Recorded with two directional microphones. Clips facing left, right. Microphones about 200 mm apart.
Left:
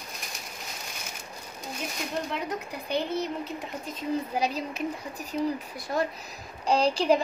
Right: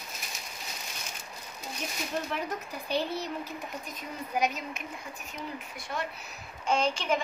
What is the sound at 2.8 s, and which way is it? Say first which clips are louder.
Speech: left 2 dB; 20° left (ahead or behind).